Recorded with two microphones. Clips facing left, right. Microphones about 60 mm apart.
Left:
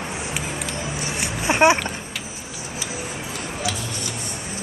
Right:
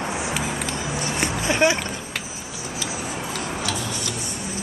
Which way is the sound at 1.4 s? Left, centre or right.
Left.